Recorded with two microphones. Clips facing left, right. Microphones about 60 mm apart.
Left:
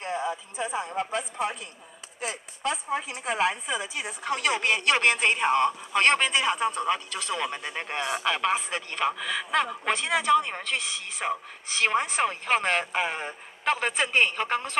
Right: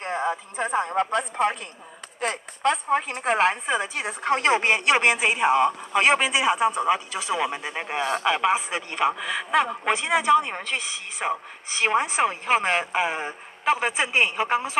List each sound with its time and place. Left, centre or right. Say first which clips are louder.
0.0 s a man's voice: right 4 dB; right; by 14.8 s centre